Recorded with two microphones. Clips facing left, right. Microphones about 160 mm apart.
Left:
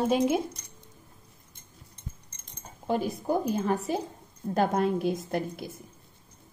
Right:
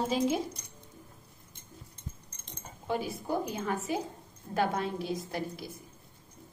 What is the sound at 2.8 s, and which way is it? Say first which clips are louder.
A woman's voice: left 5 dB; 40° left (ahead or behind).